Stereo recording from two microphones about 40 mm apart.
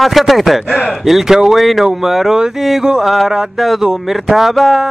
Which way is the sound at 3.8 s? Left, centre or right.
Centre.